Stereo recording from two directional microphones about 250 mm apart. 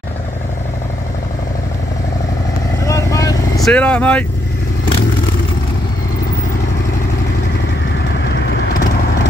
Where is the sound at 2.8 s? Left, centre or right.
Centre.